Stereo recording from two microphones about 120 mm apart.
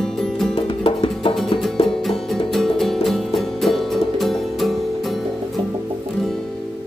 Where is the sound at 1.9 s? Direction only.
5° left (ahead or behind).